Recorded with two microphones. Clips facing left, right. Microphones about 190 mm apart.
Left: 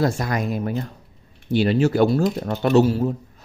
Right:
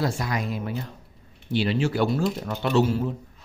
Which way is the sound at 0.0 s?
50° left (ahead or behind).